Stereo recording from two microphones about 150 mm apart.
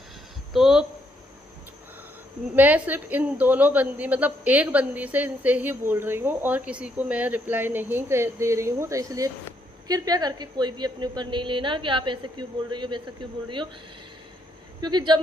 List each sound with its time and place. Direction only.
0.5 s speech: 5° right (ahead or behind)
2.5 s a woman's voice: 10° right (ahead or behind); by 13.0 s 30° right (ahead or behind)
14.8 s speech: 30° right (ahead or behind)